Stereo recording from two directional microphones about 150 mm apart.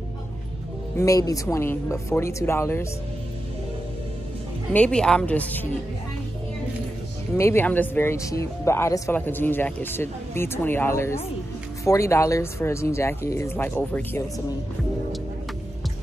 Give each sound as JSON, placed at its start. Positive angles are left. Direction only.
{"t": 0.9, "sound": "speech", "side_deg": 20}
{"t": 4.7, "sound": "speech", "side_deg": 5}
{"t": 7.3, "sound": "speech", "side_deg": 15}